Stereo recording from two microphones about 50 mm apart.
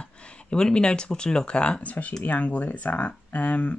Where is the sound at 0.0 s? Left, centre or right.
Left.